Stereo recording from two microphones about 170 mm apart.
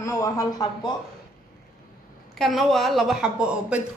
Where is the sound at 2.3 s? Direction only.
Centre (ahead or behind).